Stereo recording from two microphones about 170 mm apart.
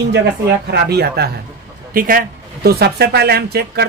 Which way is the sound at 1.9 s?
55° right (ahead or behind).